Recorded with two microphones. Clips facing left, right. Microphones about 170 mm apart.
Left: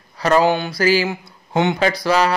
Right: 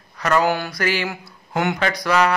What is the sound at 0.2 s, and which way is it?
A man's voice, 30° left (ahead or behind).